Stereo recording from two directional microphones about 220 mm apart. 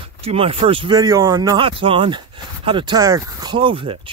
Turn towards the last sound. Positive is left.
turn(degrees=-25)  # may be behind; listen again after turning